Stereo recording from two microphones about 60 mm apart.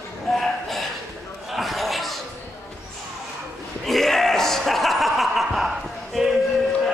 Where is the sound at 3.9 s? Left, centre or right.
Centre.